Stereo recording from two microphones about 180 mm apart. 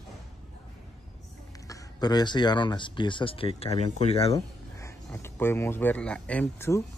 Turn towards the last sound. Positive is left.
turn(degrees=15)  # may be behind; listen again after turning